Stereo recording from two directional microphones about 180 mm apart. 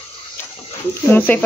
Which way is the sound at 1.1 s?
10° left (ahead or behind).